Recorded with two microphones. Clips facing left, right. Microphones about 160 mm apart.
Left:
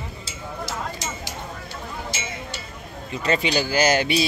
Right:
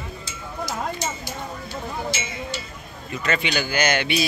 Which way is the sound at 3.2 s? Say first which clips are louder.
Left 2 dB; 35° left (ahead or behind).